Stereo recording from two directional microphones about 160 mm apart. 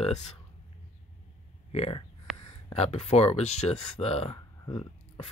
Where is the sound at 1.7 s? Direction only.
40° left (ahead or behind).